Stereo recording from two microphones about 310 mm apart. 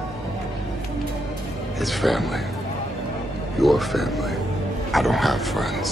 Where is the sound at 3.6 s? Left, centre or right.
Centre.